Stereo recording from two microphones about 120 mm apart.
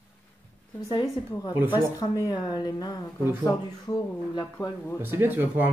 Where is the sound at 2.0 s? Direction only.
30° left (ahead or behind).